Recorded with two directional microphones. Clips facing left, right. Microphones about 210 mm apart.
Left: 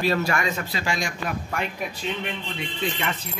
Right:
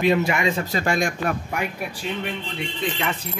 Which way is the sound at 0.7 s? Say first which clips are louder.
Right 6 dB; 55° right (ahead or behind).